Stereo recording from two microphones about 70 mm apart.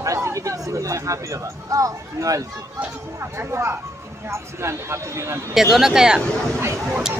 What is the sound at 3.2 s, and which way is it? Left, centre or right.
Speech, right.